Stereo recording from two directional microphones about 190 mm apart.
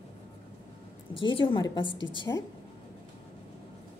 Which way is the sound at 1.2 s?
25° left (ahead or behind).